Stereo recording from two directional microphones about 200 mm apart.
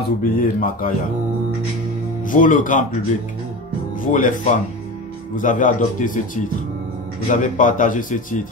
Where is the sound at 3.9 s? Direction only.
40° left (ahead or behind).